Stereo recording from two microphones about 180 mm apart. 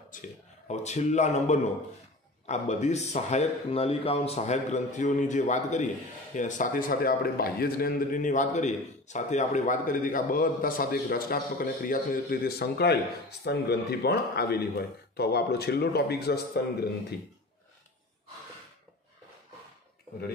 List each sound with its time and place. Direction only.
0.1 s a man's voice: 50° left (ahead or behind); by 16.6 s 65° left (ahead or behind)